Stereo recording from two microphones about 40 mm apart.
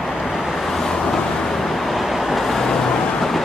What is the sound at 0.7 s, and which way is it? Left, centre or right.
Vehicle, centre.